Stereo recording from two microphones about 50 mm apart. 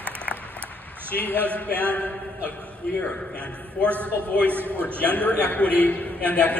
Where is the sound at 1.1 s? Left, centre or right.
Left.